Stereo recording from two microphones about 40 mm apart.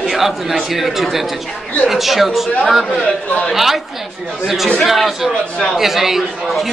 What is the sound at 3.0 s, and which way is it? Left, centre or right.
Speech, left.